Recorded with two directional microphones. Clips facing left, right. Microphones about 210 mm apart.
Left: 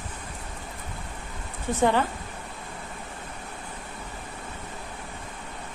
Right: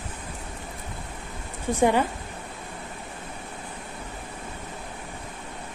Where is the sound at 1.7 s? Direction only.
15° right (ahead or behind).